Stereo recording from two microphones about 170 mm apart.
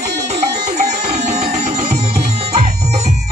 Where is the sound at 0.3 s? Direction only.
40° right (ahead or behind).